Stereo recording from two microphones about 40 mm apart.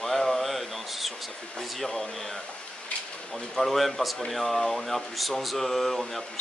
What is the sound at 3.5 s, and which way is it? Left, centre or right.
Speech, centre.